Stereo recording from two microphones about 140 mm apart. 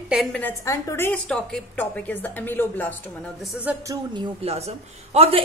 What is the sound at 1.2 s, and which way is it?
A woman's voice, 5° left (ahead or behind).